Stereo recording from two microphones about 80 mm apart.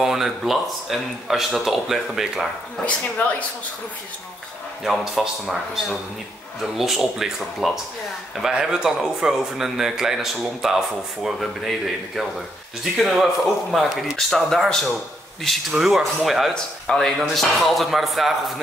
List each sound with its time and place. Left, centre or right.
0.0 s speech: centre
2.8 s speech: centre
5.0 s speech: centre
12.9 s speech: centre